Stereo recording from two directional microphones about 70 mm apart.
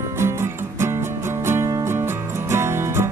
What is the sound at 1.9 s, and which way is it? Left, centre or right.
Music, right.